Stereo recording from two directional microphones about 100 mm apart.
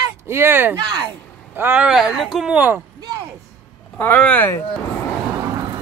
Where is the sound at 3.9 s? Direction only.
15° left (ahead or behind).